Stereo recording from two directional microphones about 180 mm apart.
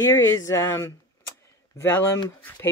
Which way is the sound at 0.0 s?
15° left (ahead or behind).